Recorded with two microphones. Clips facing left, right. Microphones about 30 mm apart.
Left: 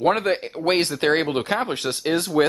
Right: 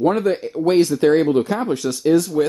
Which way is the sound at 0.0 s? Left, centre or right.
Left.